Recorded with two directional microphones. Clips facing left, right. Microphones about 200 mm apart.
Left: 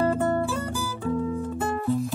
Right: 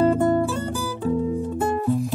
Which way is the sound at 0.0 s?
15° right (ahead or behind).